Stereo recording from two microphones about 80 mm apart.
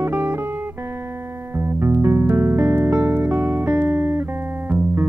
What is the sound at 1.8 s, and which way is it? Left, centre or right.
Music, right.